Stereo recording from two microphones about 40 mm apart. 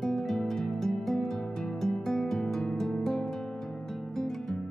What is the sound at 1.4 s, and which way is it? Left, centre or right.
Music, left.